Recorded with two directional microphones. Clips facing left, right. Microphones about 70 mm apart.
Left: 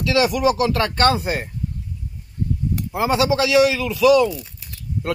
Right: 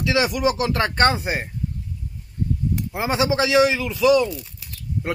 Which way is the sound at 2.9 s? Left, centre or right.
Right.